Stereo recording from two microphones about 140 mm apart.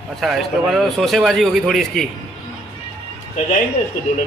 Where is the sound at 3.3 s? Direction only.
60° left (ahead or behind).